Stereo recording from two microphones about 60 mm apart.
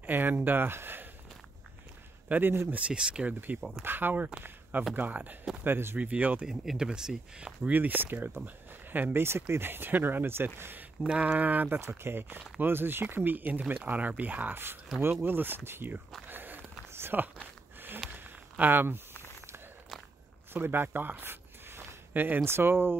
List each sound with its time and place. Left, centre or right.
0.0 s speech: right
2.2 s speech: right
2.7 s speech: centre
3.8 s speech: right
5.6 s speech: right
5.9 s speech: right
6.4 s speech: centre
7.6 s speech: right
11.1 s speech: centre
11.8 s speech: right
16.3 s a sound: right
20.5 s a sound: right
22.4 s speech: right